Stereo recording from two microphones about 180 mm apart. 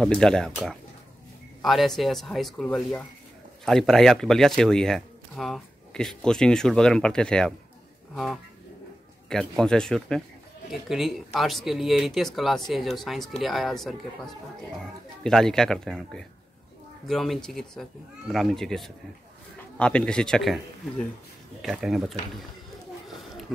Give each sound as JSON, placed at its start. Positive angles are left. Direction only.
{"t": 0.0, "sound": "speech", "side_deg": 5}
{"t": 1.6, "sound": "speech", "side_deg": 0}